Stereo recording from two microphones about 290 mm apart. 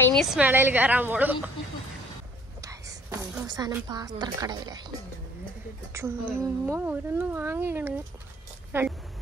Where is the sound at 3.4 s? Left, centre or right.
Centre.